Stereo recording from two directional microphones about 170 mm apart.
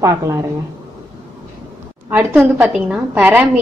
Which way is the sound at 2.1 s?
10° right (ahead or behind).